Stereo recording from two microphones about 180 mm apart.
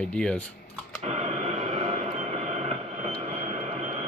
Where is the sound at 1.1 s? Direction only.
35° right (ahead or behind).